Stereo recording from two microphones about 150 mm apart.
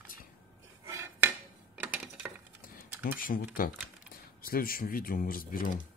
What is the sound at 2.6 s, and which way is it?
Computer keyboard, 70° left (ahead or behind).